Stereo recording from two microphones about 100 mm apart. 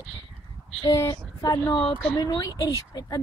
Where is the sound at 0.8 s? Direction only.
40° left (ahead or behind).